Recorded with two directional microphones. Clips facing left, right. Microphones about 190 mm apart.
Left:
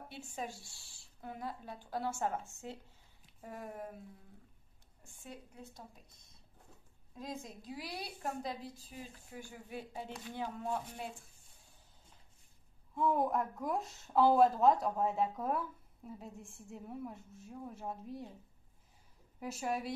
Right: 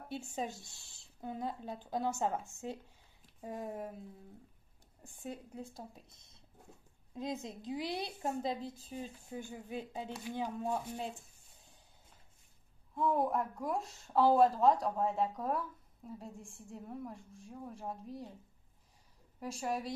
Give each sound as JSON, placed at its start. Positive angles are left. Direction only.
{"t": 0.3, "sound": "a woman's voice", "side_deg": -20}
{"t": 5.0, "sound": "a woman's voice", "side_deg": -30}
{"t": 7.2, "sound": "a woman's voice", "side_deg": -25}
{"t": 12.9, "sound": "speech", "side_deg": 0}
{"t": 19.4, "sound": "speech", "side_deg": 0}